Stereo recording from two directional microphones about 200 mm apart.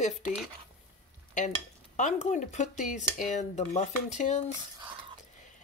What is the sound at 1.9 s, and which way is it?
Speech, 35° left (ahead or behind).